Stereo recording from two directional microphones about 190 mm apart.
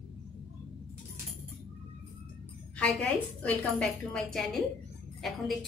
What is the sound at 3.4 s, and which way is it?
A woman's voice, 5° left (ahead or behind).